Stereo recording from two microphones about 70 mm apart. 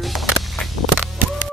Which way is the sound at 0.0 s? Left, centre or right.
Centre.